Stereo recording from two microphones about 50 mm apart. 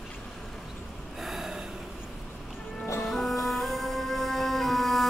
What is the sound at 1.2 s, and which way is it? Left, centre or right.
Snort, centre.